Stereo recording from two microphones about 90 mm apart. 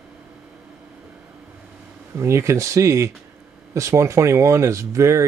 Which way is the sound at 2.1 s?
30° right (ahead or behind).